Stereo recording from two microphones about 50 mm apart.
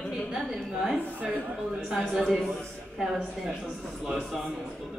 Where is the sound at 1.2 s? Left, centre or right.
Right.